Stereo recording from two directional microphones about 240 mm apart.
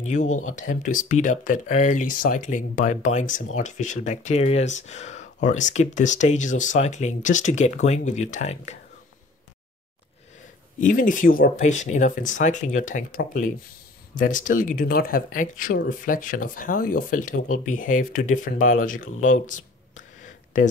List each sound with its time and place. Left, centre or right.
0.0 s speech: left
10.8 s speech: left
19.2 s a sound: left